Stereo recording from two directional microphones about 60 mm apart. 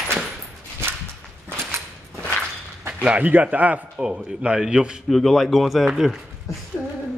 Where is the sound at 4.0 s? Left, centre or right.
Centre.